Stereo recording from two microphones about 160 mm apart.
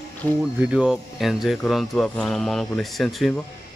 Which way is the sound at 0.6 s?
5° right (ahead or behind).